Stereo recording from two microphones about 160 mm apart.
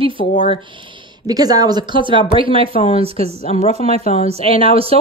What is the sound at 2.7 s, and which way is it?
Speech, 35° left (ahead or behind).